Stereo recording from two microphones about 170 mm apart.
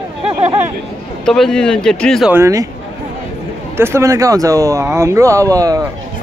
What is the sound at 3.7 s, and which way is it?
Speech, 15° right (ahead or behind).